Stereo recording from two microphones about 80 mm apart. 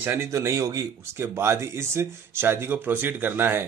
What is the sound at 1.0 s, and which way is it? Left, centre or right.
Speech, right.